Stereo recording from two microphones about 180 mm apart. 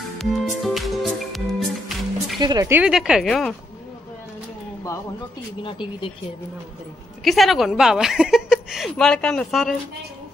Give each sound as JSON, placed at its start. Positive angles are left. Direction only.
{"t": 0.2, "sound": "music", "side_deg": 0}
{"t": 2.4, "sound": "speech", "side_deg": -20}
{"t": 2.8, "sound": "a woman's voice", "side_deg": -5}
{"t": 5.6, "sound": "speech", "side_deg": 25}
{"t": 7.2, "sound": "a woman's voice", "side_deg": 0}